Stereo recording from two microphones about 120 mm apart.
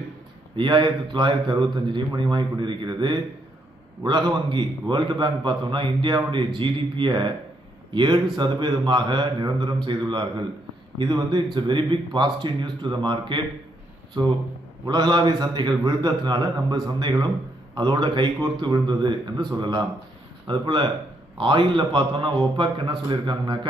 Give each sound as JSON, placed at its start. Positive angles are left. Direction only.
{"t": 0.6, "sound": "a man's voice", "side_deg": -40}
{"t": 14.9, "sound": "a man's voice", "side_deg": -35}